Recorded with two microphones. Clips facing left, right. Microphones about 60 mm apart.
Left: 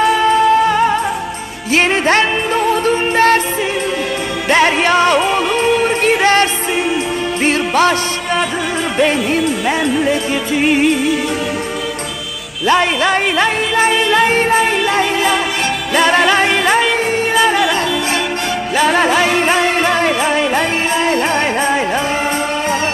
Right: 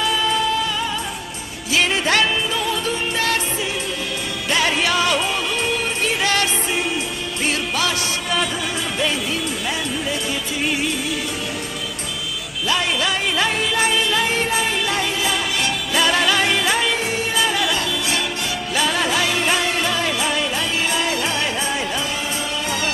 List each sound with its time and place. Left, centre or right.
0.2 s music: left
4.5 s music: left
8.9 s music: left
12.6 s music: left
18.8 s music: left